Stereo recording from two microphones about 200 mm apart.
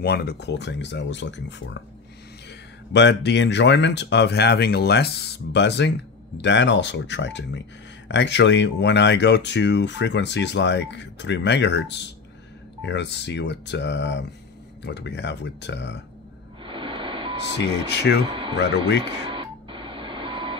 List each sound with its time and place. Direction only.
0.0 s speech: 55° left (ahead or behind)
2.9 s speech: 60° left (ahead or behind)
16.6 s a sound: 25° right (ahead or behind)
17.8 s speech: 60° left (ahead or behind)
18.2 s speech: 25° right (ahead or behind)
18.6 s speech: 60° left (ahead or behind)
19.0 s a sound: 25° right (ahead or behind)